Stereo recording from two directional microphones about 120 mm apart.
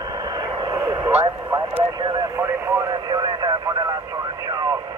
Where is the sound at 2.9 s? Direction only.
35° right (ahead or behind).